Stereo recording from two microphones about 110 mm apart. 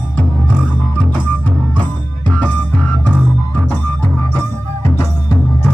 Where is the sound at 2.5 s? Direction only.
15° left (ahead or behind).